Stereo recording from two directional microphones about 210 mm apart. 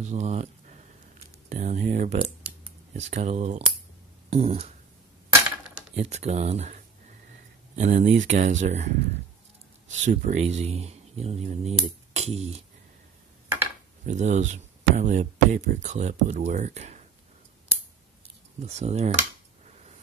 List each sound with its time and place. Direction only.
0.0 s a sound: 35° right (ahead or behind)
1.5 s speech: 30° right (ahead or behind)
5.9 s speech: 30° right (ahead or behind)
10.0 s speech: 35° right (ahead or behind)
14.0 s speech: 35° right (ahead or behind)
18.6 s speech: 30° right (ahead or behind)